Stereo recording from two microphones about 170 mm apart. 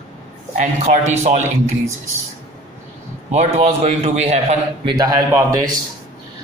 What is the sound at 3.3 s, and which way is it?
A man's voice, 40° right (ahead or behind).